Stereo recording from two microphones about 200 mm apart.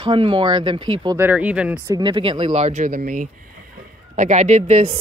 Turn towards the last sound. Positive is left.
turn(degrees=-30)  # may be behind; listen again after turning